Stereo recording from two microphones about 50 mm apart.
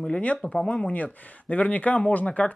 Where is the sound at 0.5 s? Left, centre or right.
Centre.